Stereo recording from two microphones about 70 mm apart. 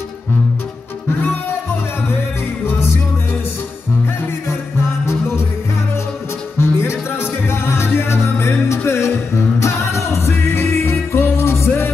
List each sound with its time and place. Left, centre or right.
2.6 s music: left
4.5 s music: left
6.6 s music: left